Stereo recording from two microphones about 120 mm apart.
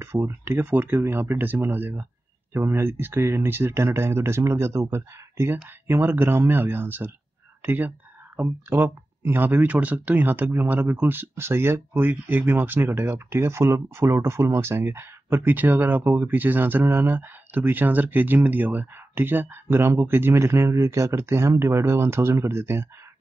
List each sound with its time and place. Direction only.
0.0 s speech: 20° right (ahead or behind)